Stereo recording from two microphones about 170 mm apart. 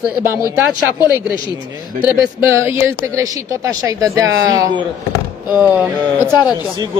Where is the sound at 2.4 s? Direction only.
15° right (ahead or behind).